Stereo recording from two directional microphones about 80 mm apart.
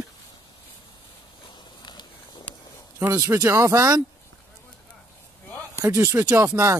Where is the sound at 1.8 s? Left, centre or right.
Left.